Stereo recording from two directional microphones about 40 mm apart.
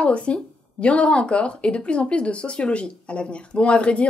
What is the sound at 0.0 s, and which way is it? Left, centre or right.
Speech, left.